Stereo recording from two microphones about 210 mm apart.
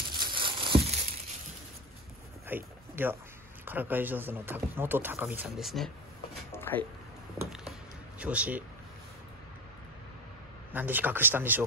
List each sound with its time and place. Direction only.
0.2 s crumpling: 25° right (ahead or behind)
2.4 s a sound: 10° right (ahead or behind)
3.6 s speech: 10° right (ahead or behind)
6.5 s a sound: 10° left (ahead or behind)
8.2 s speech: 5° right (ahead or behind)
10.7 s speech: 10° right (ahead or behind)